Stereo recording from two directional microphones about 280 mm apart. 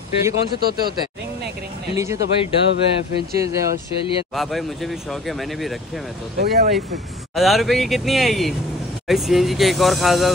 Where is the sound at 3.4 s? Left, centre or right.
Centre.